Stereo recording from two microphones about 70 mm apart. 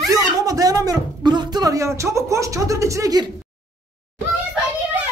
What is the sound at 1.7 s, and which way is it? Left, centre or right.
Speech, right.